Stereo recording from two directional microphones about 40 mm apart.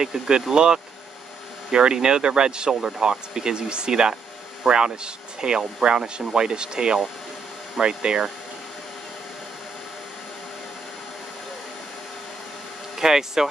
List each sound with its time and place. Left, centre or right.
0.0 s speech: centre
12.9 s speech: centre